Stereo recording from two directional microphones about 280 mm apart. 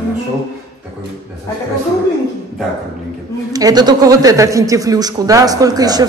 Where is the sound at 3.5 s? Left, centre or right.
Centre.